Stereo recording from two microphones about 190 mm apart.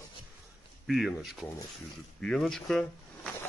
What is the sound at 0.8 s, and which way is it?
Speech, centre (ahead or behind).